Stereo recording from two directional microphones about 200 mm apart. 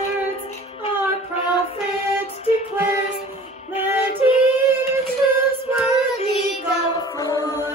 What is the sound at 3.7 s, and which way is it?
Female singing, 30° left (ahead or behind).